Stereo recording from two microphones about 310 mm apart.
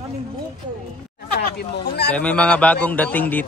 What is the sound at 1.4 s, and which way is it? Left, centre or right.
Speech, left.